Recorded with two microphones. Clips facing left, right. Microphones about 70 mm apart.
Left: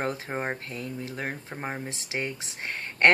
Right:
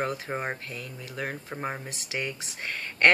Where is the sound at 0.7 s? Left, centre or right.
Left.